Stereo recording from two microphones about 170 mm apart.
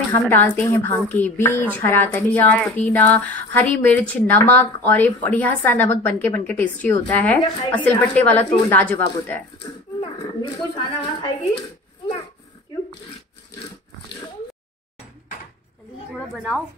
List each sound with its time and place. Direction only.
0.1 s a woman's voice: 10° left (ahead or behind)
9.9 s speech: 25° left (ahead or behind)